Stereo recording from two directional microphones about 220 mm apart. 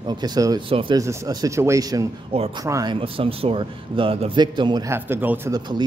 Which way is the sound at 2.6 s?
15° right (ahead or behind).